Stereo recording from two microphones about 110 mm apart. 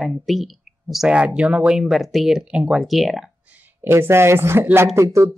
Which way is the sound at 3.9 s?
25° right (ahead or behind).